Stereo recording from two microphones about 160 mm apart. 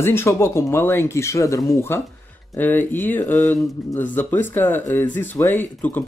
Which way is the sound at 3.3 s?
50° left (ahead or behind).